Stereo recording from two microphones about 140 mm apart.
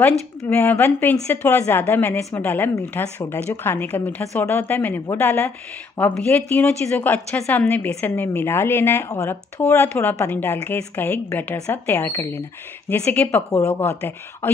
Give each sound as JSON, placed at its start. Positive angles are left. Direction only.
{"t": 0.5, "sound": "a woman's voice", "side_deg": 15}